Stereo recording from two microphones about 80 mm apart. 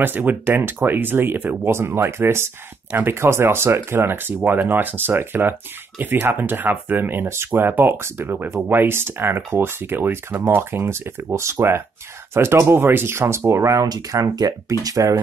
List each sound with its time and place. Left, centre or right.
0.0 s speech: right
13.8 s speech: right